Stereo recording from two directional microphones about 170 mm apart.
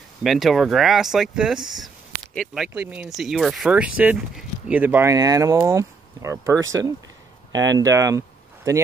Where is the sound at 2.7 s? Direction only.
10° right (ahead or behind).